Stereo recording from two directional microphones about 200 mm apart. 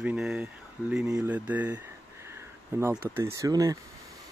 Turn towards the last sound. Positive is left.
turn(degrees=-15)  # may be behind; listen again after turning